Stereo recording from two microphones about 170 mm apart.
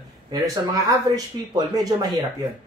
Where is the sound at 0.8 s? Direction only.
20° right (ahead or behind).